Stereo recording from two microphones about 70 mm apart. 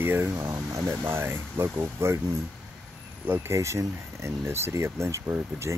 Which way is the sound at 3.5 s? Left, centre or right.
Right.